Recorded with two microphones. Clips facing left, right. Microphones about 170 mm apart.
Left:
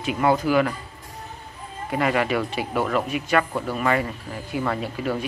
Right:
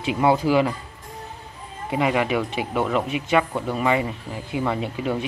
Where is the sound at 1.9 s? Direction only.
10° right (ahead or behind).